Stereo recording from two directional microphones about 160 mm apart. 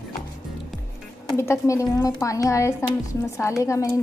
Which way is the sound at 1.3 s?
15° left (ahead or behind).